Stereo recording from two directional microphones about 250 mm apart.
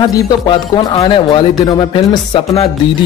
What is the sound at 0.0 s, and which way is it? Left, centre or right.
Speech, centre.